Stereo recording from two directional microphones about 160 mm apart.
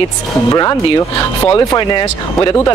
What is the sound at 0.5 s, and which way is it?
Speech, 25° left (ahead or behind).